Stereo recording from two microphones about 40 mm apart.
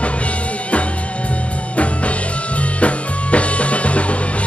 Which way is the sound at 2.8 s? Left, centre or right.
Left.